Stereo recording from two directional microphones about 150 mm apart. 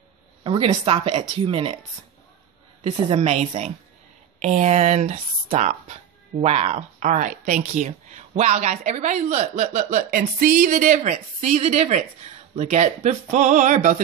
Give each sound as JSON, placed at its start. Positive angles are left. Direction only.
{"t": 0.4, "sound": "speech", "side_deg": -35}
{"t": 2.8, "sound": "speech", "side_deg": -40}